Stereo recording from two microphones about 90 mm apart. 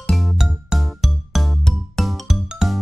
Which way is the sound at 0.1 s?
Centre (ahead or behind).